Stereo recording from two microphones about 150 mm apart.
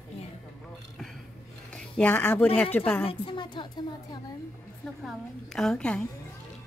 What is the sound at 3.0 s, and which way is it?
Speech, 35° left (ahead or behind).